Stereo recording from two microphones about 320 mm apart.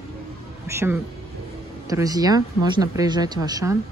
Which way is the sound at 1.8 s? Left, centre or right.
Centre.